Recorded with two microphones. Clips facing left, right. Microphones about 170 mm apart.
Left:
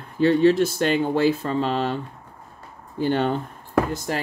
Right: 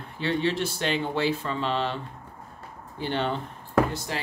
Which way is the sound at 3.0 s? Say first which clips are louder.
Left 6 dB; 45° left (ahead or behind).